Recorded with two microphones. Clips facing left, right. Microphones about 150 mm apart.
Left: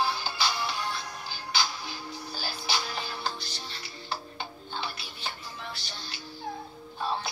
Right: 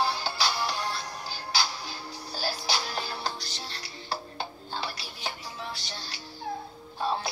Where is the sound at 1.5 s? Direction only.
35° right (ahead or behind).